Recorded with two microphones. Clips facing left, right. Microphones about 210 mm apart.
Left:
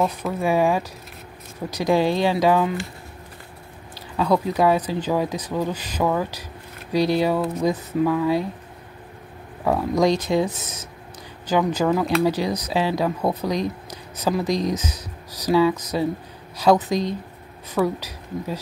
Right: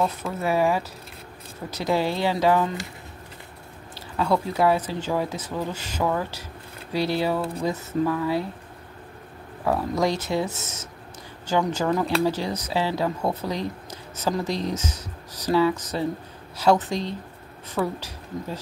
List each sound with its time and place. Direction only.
0.2 s speech: 15° left (ahead or behind)
3.9 s speech: 15° left (ahead or behind)
9.7 s speech: 15° left (ahead or behind)